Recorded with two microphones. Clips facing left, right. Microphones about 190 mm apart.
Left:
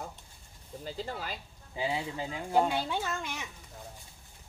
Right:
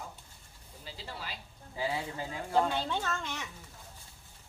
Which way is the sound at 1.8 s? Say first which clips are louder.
Left 2 dB; 20° left (ahead or behind).